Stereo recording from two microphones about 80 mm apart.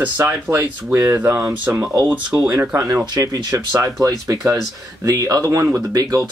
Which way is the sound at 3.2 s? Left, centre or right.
Right.